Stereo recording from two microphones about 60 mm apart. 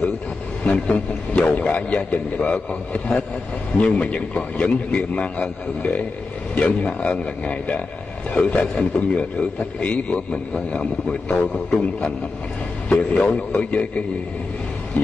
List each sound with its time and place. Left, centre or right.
0.7 s a man's voice: centre